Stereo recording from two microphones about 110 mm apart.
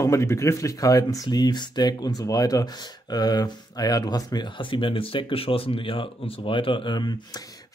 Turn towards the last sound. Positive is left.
turn(degrees=40)  # may be behind; listen again after turning